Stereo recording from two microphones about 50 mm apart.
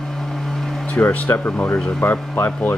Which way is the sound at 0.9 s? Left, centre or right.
Left.